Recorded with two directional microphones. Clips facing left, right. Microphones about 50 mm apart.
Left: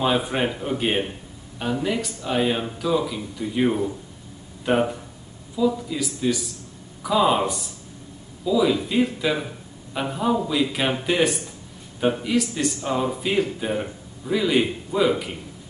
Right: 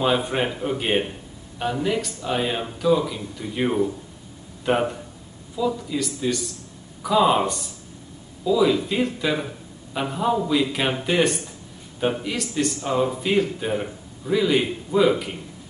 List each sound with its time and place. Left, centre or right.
0.0 s speech: centre